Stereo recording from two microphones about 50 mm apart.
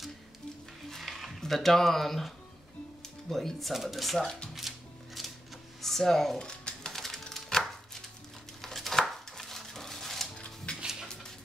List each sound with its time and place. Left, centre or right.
0.8 s a sound: centre
3.3 s speech: centre
4.2 s speech: centre
4.6 s music: centre
5.8 s speech: centre
6.4 s chopping: centre
10.3 s a sound: centre